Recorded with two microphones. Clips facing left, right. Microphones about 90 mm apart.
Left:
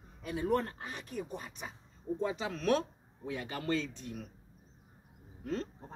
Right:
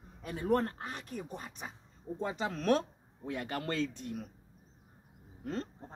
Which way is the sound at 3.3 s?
55° right (ahead or behind).